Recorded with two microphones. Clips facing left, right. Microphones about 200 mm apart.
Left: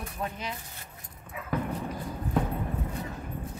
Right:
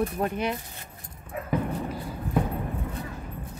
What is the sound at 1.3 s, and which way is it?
Dog, 50° right (ahead or behind).